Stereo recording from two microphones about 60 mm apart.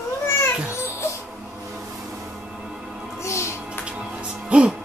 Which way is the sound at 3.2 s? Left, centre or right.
Left.